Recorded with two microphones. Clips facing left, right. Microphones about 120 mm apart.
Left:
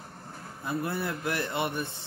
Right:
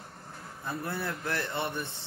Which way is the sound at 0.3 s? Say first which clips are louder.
Left 4 dB; 10° left (ahead or behind).